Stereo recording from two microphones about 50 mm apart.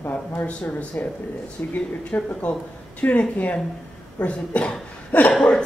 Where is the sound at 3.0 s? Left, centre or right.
Left.